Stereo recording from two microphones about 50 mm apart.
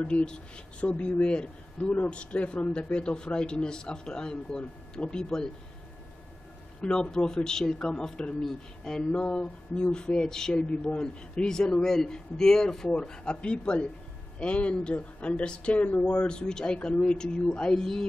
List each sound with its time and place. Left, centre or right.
0.1 s a man's voice: centre
6.8 s a man's voice: centre
15.8 s a man's voice: left; by 18.0 s centre